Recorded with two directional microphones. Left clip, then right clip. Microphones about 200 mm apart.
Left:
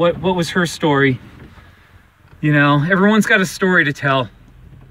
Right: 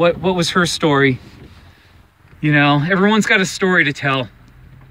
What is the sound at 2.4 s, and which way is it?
Speech, centre (ahead or behind).